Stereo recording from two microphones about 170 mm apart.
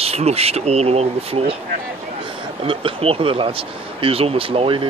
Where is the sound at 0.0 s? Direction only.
35° right (ahead or behind).